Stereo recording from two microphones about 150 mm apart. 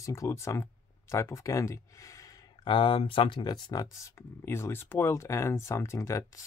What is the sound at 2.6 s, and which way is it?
Speech, 35° left (ahead or behind).